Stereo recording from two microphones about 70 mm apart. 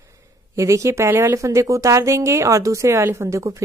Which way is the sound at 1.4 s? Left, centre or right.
Right.